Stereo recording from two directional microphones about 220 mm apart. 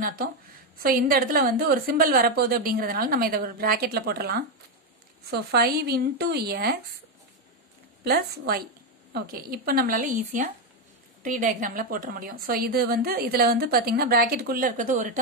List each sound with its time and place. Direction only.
0.0 s a woman's voice: 40° right (ahead or behind)
8.0 s a woman's voice: 45° right (ahead or behind)